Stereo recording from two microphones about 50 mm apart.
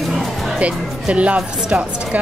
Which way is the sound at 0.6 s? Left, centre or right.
Right.